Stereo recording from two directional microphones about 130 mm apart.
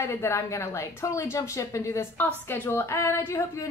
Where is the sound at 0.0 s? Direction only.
20° left (ahead or behind).